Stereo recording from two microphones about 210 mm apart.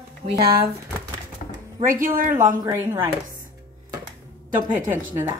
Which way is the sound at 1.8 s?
40° right (ahead or behind).